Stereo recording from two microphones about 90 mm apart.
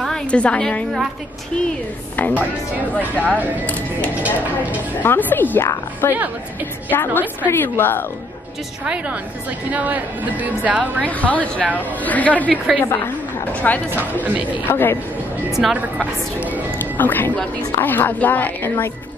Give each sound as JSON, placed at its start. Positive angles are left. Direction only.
{"t": 0.0, "sound": "a woman's voice", "side_deg": 10}
{"t": 2.1, "sound": "a woman's voice", "side_deg": 20}
{"t": 4.2, "sound": "a woman's voice", "side_deg": -20}
{"t": 5.0, "sound": "a woman's voice", "side_deg": 25}
{"t": 8.8, "sound": "a woman's voice", "side_deg": -10}
{"t": 11.1, "sound": "speech", "side_deg": 15}
{"t": 12.4, "sound": "a woman's voice", "side_deg": -10}
{"t": 12.8, "sound": "a woman's voice", "side_deg": 35}
{"t": 13.5, "sound": "speech", "side_deg": 15}
{"t": 14.2, "sound": "a woman's voice", "side_deg": -20}
{"t": 14.7, "sound": "a woman's voice", "side_deg": 25}
{"t": 15.5, "sound": "speech", "side_deg": 0}
{"t": 16.7, "sound": "a woman's voice", "side_deg": 20}